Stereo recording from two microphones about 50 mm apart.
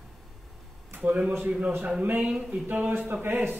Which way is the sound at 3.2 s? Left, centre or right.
Right.